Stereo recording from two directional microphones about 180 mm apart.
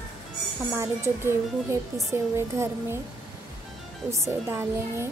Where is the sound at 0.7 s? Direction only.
15° right (ahead or behind).